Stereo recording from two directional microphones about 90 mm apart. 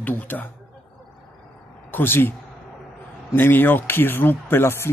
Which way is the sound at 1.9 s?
25° left (ahead or behind).